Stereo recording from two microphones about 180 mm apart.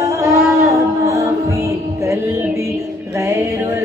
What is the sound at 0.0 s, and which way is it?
Music, 15° right (ahead or behind).